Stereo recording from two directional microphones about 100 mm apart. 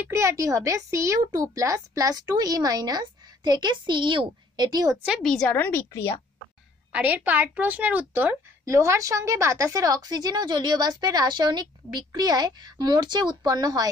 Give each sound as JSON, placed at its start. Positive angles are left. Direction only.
{"t": 0.0, "sound": "a woman's voice", "side_deg": -30}
{"t": 5.2, "sound": "a woman's voice", "side_deg": 5}
{"t": 5.6, "sound": "a woman's voice", "side_deg": 20}
{"t": 6.9, "sound": "a woman's voice", "side_deg": -15}
{"t": 8.6, "sound": "a woman's voice", "side_deg": -30}